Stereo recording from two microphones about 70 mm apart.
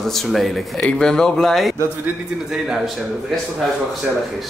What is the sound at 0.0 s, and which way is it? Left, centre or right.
Speech, centre.